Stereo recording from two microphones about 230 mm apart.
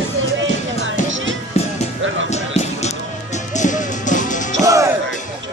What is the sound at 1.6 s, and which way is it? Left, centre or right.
Music, left.